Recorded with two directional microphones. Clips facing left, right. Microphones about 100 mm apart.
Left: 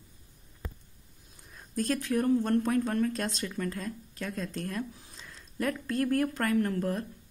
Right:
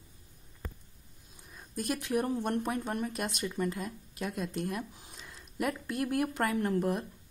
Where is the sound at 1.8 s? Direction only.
15° right (ahead or behind).